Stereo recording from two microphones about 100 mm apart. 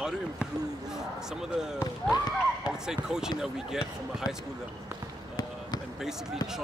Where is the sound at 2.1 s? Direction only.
40° left (ahead or behind).